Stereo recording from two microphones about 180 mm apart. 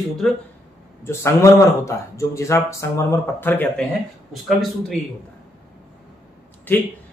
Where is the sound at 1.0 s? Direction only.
15° left (ahead or behind).